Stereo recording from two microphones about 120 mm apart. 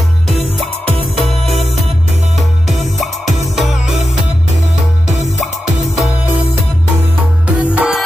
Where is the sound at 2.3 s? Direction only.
Centre (ahead or behind).